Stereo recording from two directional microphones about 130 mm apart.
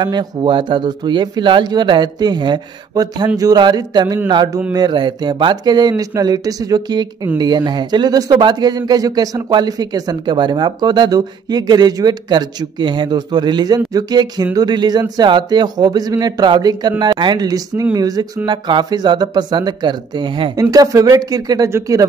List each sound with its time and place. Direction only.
0.0 s speech: 35° right (ahead or behind)
20.7 s speech: 30° right (ahead or behind)